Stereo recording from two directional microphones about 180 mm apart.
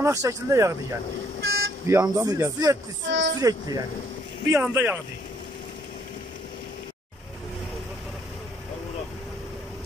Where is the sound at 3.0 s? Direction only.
90° right.